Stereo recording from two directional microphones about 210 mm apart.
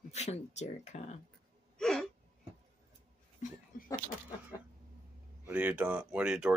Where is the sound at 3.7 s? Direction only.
40° left (ahead or behind).